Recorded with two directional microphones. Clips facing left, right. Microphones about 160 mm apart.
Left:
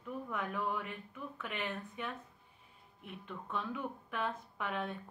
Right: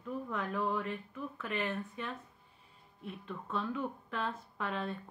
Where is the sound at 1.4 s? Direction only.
15° left (ahead or behind).